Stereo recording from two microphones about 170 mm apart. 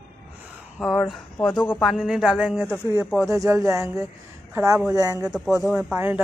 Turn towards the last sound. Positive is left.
turn(degrees=-10)  # may be behind; listen again after turning